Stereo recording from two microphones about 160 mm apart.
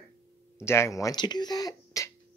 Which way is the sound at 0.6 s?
15° left (ahead or behind).